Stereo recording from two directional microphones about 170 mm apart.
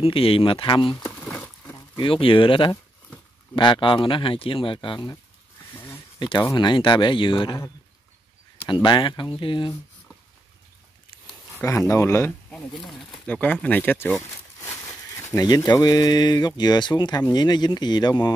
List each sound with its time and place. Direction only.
0.0 s speech: 35° left (ahead or behind)
0.9 s a sound: 10° left (ahead or behind)
2.0 s speech: 30° left (ahead or behind)
6.1 s speech: 25° left (ahead or behind)
8.8 s speech: 25° left (ahead or behind)
11.5 s speech: 15° left (ahead or behind)